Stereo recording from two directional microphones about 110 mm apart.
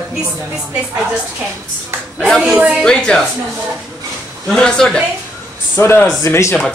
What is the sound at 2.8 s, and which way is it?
Speech, 5° left (ahead or behind).